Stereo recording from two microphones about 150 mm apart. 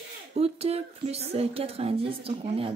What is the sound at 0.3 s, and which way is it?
Speech, 45° right (ahead or behind).